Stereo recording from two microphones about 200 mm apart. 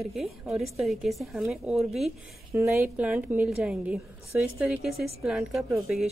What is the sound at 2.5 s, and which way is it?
A woman's voice, 15° right (ahead or behind).